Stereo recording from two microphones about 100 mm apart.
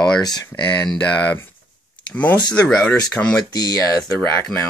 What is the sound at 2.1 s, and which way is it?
Speech, 15° left (ahead or behind).